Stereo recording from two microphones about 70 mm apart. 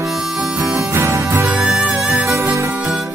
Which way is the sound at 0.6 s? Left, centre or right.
Right.